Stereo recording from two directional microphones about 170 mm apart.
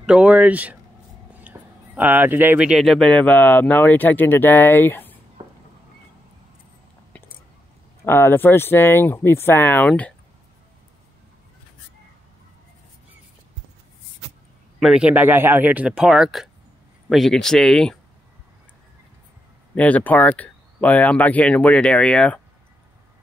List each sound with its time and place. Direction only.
0.0 s speech: 5° right (ahead or behind); by 5.2 s 10° left (ahead or behind)
8.0 s speech: 15° left (ahead or behind)
14.8 s speech: 5° right (ahead or behind)
19.7 s speech: 10° left (ahead or behind)